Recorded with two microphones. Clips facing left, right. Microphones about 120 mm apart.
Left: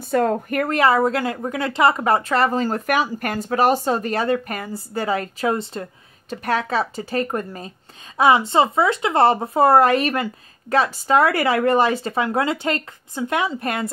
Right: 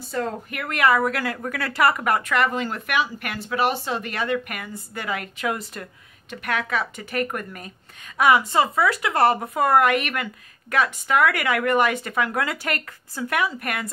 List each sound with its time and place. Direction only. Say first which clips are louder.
0.0 s a woman's voice: left 8 dB; 55° left (ahead or behind); by 13.8 s 30° left (ahead or behind)